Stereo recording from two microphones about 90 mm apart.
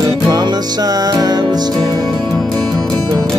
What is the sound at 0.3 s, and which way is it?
Music, 50° right (ahead or behind).